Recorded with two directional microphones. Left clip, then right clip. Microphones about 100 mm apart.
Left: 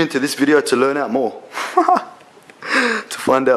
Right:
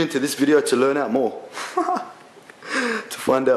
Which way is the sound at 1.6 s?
20° left (ahead or behind).